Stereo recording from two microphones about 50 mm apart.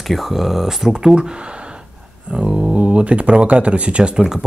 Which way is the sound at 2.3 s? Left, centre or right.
Centre.